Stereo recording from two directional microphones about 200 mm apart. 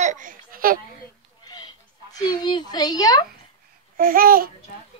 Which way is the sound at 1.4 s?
20° left (ahead or behind).